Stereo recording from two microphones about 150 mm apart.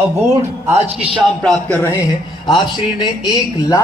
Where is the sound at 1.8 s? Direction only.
20° left (ahead or behind).